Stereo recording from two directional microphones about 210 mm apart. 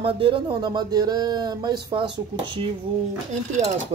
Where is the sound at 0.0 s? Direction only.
25° right (ahead or behind).